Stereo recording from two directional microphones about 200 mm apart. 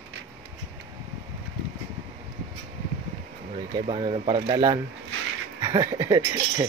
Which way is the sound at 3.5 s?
30° right (ahead or behind).